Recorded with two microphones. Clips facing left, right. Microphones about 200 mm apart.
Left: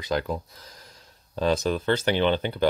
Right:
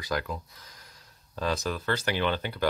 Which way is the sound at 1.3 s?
25° left (ahead or behind).